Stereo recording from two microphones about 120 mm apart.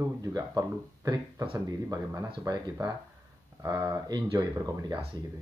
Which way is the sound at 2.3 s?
35° right (ahead or behind).